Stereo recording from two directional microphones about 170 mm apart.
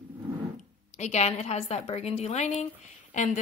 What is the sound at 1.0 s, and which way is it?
A woman's voice, 40° left (ahead or behind).